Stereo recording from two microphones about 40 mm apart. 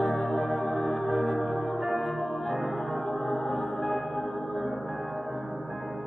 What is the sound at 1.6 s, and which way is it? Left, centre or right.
Music, centre.